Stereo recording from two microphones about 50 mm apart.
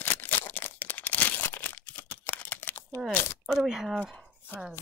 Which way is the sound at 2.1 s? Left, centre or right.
Left.